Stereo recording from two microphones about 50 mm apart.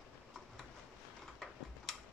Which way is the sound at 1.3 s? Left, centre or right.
Centre.